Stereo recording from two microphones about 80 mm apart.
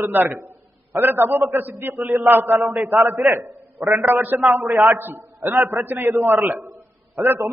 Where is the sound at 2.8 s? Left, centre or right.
Right.